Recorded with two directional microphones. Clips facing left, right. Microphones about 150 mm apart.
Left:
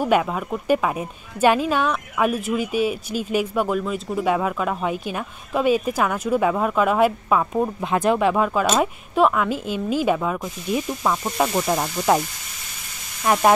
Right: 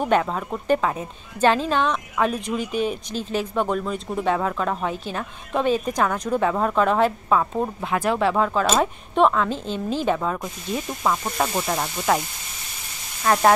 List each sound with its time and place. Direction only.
0.0 s speech: 10° left (ahead or behind)
13.2 s speech: 10° left (ahead or behind)